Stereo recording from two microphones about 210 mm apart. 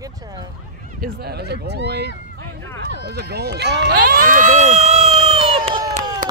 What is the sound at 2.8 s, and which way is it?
Run, 50° right (ahead or behind).